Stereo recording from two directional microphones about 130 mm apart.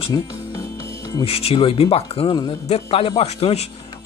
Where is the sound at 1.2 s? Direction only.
50° left (ahead or behind).